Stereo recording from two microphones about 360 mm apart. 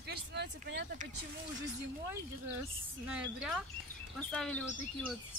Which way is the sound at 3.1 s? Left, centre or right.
Centre.